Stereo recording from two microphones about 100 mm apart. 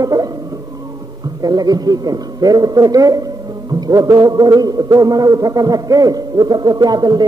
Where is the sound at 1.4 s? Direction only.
40° right (ahead or behind).